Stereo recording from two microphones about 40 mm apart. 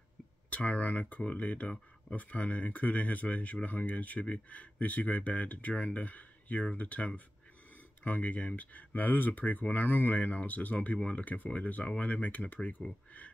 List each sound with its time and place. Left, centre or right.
0.7 s speech: left